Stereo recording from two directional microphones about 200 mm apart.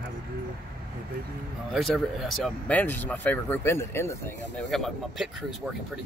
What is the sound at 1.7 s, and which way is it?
Speech, centre (ahead or behind).